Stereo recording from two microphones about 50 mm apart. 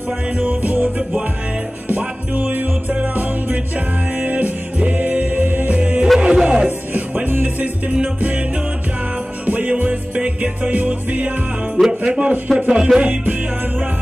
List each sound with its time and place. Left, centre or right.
0.4 s music: right
6.1 s music: centre
6.9 s music: right
9.5 s music: right
12.0 s speech: right
12.5 s music: centre
13.1 s music: right